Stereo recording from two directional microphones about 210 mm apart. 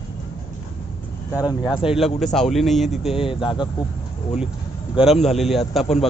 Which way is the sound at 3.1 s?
25° left (ahead or behind).